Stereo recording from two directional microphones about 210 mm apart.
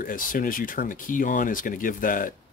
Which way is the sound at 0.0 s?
40° left (ahead or behind).